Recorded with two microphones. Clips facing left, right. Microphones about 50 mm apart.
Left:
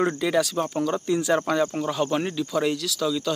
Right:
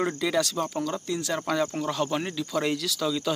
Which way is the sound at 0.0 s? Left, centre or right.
Centre.